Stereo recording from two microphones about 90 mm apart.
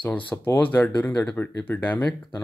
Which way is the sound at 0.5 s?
15° left (ahead or behind).